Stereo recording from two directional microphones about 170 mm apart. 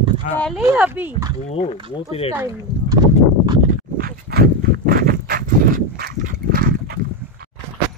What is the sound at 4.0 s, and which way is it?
Horse, 65° right (ahead or behind).